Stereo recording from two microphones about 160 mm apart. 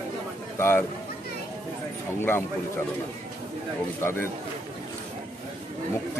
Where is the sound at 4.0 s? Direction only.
15° left (ahead or behind).